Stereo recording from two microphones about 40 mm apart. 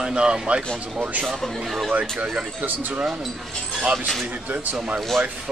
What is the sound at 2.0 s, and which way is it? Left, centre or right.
Speech, right.